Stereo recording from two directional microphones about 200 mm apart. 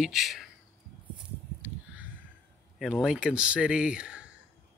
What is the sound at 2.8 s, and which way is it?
Speech, centre (ahead or behind).